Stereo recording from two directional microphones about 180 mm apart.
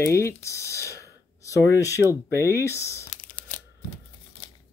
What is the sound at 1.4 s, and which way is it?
Speech, 15° left (ahead or behind).